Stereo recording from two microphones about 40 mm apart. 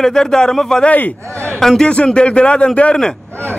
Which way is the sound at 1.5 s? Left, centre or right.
Centre.